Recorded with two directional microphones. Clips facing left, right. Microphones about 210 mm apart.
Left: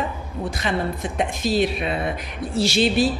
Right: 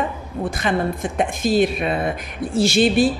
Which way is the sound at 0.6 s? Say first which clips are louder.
Right 3 dB; 50° right (ahead or behind).